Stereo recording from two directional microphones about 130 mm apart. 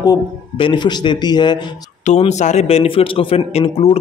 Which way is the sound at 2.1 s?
60° left (ahead or behind).